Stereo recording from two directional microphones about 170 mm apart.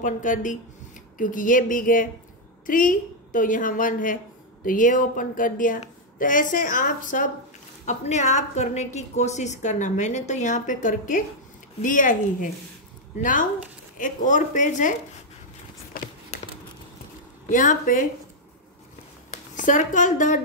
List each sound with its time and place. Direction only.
0.0 s a woman's voice: 50° left (ahead or behind)
16.3 s a sound: 40° left (ahead or behind)
17.5 s a woman's voice: 50° left (ahead or behind)
19.3 s speech: 50° left (ahead or behind)